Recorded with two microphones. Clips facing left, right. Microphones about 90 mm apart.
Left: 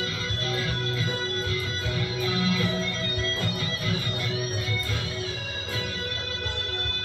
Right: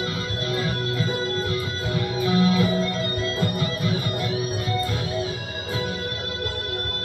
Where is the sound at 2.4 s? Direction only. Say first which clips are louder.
Right 8 dB; 35° right (ahead or behind).